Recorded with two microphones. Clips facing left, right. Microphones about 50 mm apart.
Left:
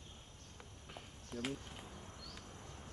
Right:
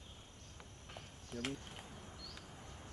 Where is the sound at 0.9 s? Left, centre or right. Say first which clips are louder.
Even; centre.